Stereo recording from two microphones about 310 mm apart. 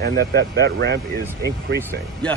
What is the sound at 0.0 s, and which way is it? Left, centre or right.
Speech, right.